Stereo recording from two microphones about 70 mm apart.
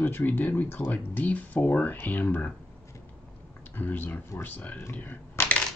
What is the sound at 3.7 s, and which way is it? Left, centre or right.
Speech, left.